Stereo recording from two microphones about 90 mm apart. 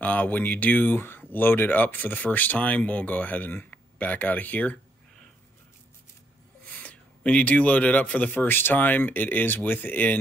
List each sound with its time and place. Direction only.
0.0 s speech: 20° left (ahead or behind)
6.7 s speech: 15° left (ahead or behind)